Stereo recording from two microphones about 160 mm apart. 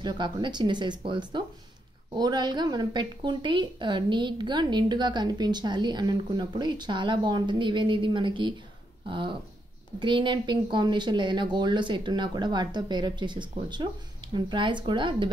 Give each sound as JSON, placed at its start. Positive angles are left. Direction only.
{"t": 0.0, "sound": "a woman's voice", "side_deg": -30}